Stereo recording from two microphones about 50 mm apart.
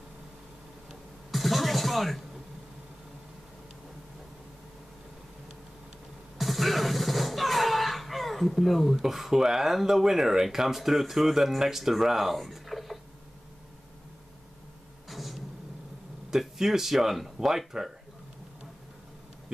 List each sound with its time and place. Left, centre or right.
1.3 s music: centre
6.3 s speech: centre
15.0 s a sound: centre
16.3 s speech: centre